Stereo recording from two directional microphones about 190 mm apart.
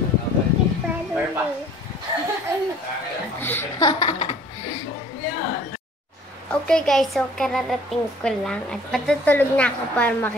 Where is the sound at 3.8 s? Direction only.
25° left (ahead or behind).